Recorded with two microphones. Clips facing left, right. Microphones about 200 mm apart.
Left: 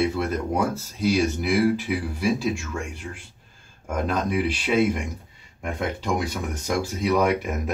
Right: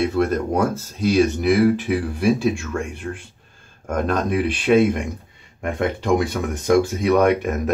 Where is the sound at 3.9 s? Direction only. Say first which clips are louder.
Right 4 dB; 55° right (ahead or behind).